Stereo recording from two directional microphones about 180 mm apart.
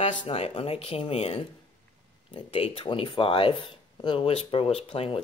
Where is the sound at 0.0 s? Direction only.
40° left (ahead or behind).